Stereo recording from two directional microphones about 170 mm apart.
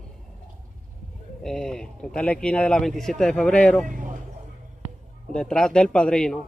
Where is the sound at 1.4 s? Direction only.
5° left (ahead or behind).